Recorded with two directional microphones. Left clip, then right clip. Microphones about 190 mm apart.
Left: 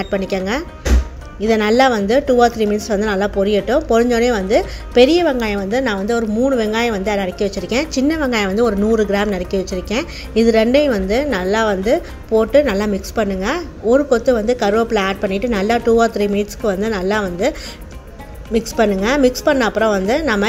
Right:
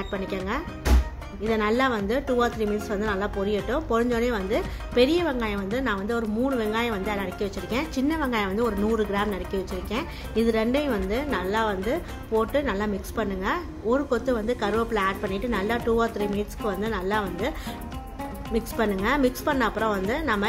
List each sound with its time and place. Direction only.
0.0 s a woman's voice: 25° left (ahead or behind)